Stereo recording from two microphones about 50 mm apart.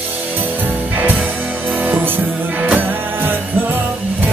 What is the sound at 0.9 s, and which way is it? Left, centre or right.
Music, right.